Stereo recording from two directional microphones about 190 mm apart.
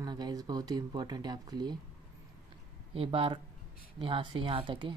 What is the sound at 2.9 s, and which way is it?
Speech, 30° right (ahead or behind).